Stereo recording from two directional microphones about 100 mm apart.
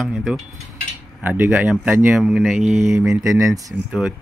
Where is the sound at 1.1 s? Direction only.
20° right (ahead or behind).